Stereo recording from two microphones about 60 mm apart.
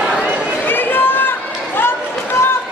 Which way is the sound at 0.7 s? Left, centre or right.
Left.